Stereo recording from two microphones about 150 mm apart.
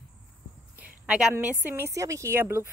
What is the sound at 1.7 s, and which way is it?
Speech, 20° right (ahead or behind).